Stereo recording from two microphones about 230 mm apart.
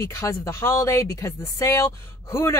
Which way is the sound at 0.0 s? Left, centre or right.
Centre.